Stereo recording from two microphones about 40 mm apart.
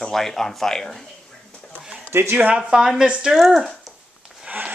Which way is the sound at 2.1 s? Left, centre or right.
Right.